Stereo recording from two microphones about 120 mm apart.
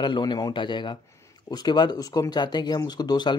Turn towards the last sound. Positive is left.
turn(degrees=35)  # may be behind; listen again after turning